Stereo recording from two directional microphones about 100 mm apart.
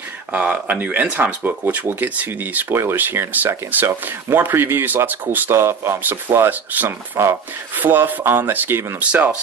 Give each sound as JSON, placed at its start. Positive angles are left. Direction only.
{"t": 0.3, "sound": "speech", "side_deg": -15}